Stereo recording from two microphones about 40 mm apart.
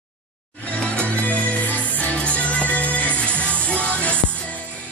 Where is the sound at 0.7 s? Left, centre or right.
Left.